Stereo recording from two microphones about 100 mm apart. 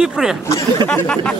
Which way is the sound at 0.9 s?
10° left (ahead or behind).